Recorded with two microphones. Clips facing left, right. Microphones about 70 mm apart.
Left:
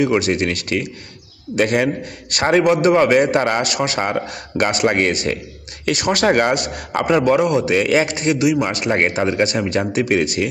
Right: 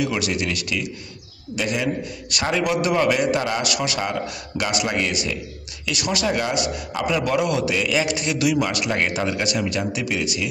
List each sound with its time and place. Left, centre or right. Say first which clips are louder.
0.0 s a man's voice: left 7 dB; left
8.4 s a man's voice: left 1 dB; left